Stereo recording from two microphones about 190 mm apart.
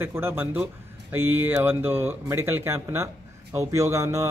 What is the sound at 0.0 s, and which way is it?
Speech, 10° right (ahead or behind).